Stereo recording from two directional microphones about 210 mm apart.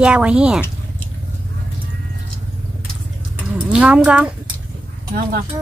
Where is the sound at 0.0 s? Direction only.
5° right (ahead or behind).